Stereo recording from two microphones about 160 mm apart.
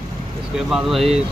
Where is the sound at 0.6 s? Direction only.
Centre (ahead or behind).